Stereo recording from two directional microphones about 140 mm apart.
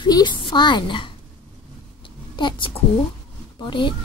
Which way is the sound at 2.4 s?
35° left (ahead or behind).